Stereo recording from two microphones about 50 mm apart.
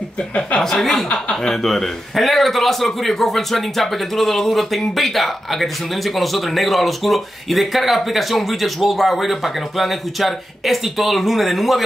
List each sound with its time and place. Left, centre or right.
0.3 s speech: left
0.6 s a man's voice: centre